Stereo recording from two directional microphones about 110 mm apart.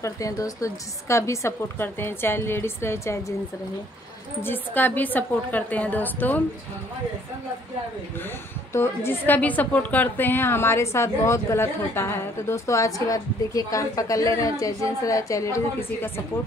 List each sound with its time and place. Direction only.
0.0 s a woman's voice: 30° left (ahead or behind)
4.4 s a woman's voice: 20° left (ahead or behind)
8.7 s a woman's voice: 25° left (ahead or behind)